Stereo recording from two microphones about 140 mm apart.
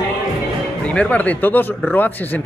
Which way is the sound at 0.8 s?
10° left (ahead or behind).